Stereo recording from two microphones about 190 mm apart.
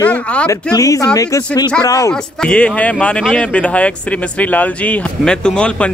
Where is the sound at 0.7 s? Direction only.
15° left (ahead or behind).